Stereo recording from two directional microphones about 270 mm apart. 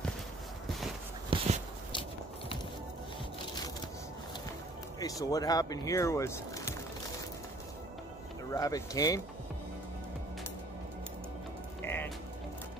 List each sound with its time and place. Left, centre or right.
1.3 s a sound: centre
5.0 s speech: centre
8.5 s speech: centre
11.8 s music: centre